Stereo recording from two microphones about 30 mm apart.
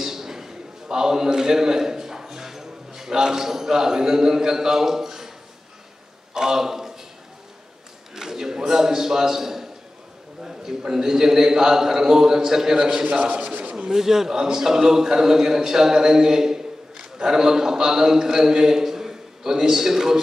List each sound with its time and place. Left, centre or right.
0.0 s a sound: centre
6.3 s a man's voice: centre
8.1 s a sound: centre
10.4 s a man's voice: centre
13.1 s a man's voice: right
13.9 s a man's voice: centre